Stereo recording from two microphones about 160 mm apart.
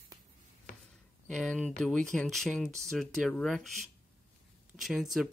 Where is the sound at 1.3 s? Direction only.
5° left (ahead or behind).